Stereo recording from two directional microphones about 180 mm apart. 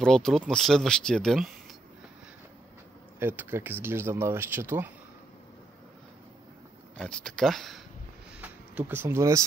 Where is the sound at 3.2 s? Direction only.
10° right (ahead or behind).